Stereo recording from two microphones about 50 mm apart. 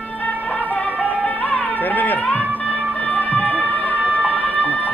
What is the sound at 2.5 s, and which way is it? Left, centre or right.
Music, left.